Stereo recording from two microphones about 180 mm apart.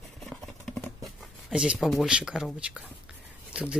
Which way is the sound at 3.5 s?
5° right (ahead or behind).